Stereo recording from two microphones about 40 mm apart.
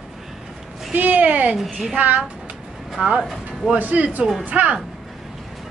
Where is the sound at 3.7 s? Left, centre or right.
Right.